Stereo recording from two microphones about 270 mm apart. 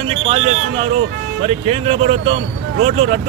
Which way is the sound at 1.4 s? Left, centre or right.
Right.